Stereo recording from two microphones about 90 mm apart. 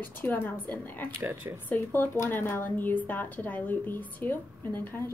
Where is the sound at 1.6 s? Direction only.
20° left (ahead or behind).